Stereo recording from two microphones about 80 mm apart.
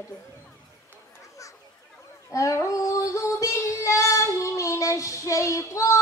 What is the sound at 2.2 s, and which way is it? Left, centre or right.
Female singing, left.